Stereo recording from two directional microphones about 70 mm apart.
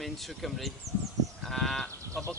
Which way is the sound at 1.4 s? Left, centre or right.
Centre.